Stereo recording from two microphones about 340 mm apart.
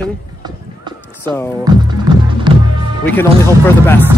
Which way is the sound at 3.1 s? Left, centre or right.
Centre.